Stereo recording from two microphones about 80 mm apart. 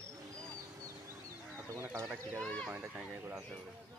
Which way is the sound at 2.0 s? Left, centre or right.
Right.